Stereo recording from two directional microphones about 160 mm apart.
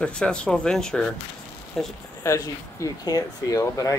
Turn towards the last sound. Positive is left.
turn(degrees=20)  # may be behind; listen again after turning